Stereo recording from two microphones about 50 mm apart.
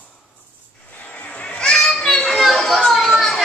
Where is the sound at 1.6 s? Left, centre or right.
Centre.